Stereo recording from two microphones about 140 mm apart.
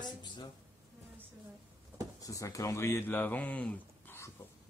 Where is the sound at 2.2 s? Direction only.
25° left (ahead or behind).